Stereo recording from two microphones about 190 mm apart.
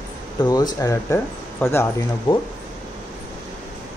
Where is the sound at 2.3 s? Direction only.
25° left (ahead or behind).